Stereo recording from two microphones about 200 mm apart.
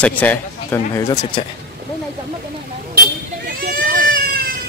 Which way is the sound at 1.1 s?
25° left (ahead or behind).